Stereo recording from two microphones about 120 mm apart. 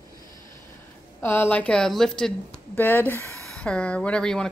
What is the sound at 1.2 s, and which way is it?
Speech, 15° left (ahead or behind).